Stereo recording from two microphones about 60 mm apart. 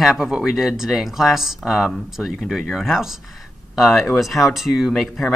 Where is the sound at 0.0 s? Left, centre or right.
Centre.